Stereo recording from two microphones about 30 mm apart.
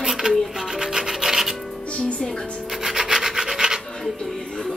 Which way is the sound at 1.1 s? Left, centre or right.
Centre.